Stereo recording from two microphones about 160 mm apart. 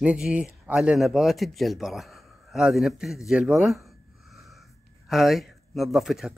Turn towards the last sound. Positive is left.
turn(degrees=0)  # may be behind; listen again after turning